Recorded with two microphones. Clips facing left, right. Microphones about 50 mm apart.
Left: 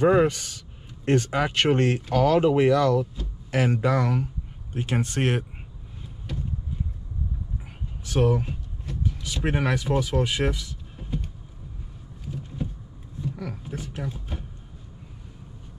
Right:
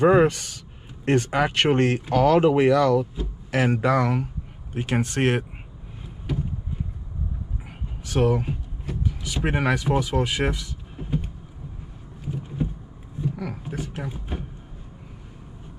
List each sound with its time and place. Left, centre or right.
0.0 s speech: right
6.3 s a sound: centre
8.4 s speech: right
11.0 s vehicle: centre
12.3 s vehicle: centre
13.5 s a sound: right
14.3 s vehicle: right